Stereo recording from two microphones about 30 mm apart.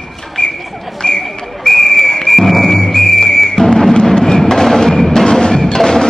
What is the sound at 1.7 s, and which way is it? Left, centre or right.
Whistle, left.